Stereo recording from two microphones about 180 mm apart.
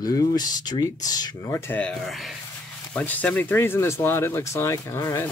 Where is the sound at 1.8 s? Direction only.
5° left (ahead or behind).